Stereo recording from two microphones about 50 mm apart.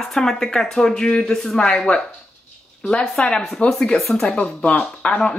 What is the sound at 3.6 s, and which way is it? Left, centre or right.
Speech, left.